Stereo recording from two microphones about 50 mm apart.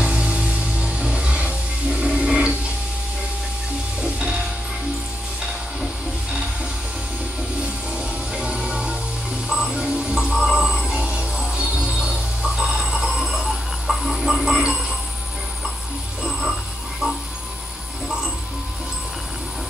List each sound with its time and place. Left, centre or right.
0.0 s music: right
4.0 s music: centre
7.9 s music: right
13.1 s a sound: centre
16.3 s a sound: centre
17.0 s music: centre